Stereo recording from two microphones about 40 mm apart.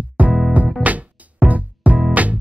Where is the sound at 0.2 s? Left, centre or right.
Right.